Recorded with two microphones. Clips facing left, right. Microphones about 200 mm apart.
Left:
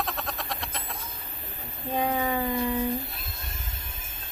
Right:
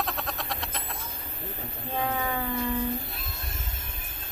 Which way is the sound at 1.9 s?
15° left (ahead or behind).